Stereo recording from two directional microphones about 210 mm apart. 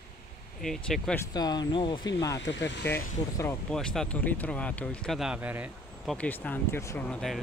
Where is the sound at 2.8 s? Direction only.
10° left (ahead or behind); by 6.2 s 5° right (ahead or behind).